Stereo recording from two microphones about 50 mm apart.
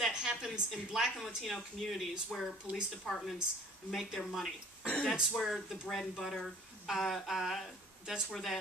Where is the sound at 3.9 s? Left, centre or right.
Centre.